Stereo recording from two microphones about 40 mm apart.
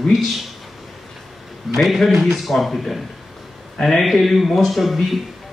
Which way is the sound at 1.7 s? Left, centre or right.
Centre.